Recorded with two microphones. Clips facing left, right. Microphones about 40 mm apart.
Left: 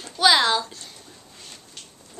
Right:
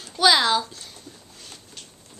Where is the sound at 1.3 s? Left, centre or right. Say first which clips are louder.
Even; centre.